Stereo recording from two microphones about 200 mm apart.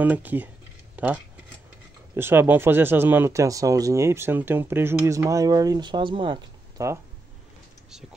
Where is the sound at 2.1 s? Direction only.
10° right (ahead or behind).